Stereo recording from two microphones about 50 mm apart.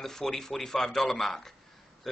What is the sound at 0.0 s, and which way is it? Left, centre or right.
Speech, centre.